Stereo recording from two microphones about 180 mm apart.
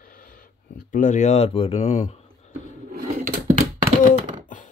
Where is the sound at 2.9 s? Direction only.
55° right (ahead or behind).